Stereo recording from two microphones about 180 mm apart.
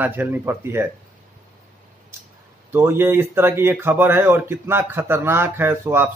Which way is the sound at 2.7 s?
15° right (ahead or behind).